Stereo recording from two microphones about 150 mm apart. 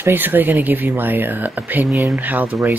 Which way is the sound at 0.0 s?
15° right (ahead or behind).